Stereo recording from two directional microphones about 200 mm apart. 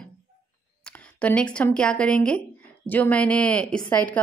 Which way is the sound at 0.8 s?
5° left (ahead or behind).